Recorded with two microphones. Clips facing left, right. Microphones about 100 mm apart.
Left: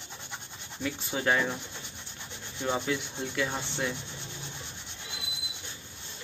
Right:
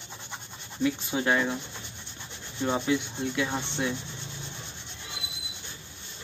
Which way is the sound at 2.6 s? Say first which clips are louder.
Right 3 dB; 5° right (ahead or behind).